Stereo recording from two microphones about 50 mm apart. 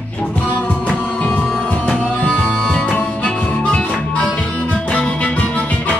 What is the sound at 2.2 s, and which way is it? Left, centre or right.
Music, centre.